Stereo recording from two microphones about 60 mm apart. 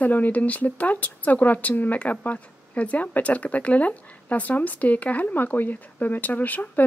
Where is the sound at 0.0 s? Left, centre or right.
Left.